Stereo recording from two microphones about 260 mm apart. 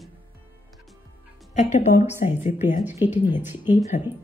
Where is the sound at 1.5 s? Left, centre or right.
Left.